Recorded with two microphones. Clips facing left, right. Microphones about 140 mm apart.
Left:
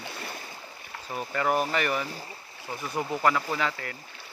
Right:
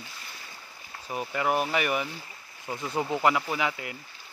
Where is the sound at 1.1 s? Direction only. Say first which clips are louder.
Even; 10° right (ahead or behind).